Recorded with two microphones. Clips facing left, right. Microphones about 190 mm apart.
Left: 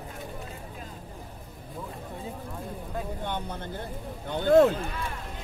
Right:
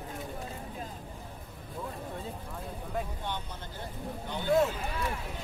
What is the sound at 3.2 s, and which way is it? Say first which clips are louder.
Vehicle: left 5 dB; 55° left (ahead or behind).